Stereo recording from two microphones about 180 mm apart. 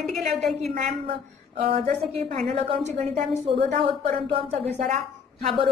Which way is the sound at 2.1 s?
35° right (ahead or behind).